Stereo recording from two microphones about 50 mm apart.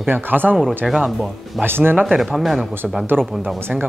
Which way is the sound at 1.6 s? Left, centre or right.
Right.